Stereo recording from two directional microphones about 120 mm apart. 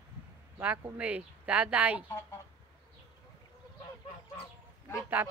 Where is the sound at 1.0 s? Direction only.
10° right (ahead or behind).